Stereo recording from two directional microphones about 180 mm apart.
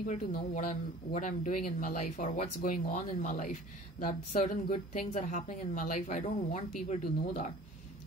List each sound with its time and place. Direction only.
0.0 s a woman's voice: 50° left (ahead or behind)